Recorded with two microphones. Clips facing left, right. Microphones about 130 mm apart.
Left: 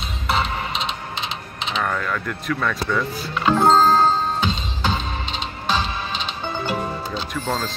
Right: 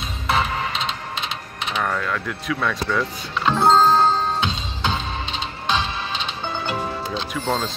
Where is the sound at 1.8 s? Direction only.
5° right (ahead or behind).